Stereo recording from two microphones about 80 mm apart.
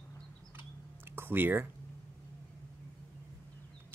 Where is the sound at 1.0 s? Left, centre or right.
Right.